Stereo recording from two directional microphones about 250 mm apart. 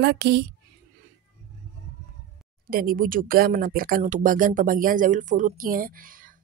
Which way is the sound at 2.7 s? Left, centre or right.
Right.